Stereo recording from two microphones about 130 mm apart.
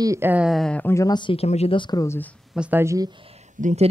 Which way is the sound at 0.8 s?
20° left (ahead or behind).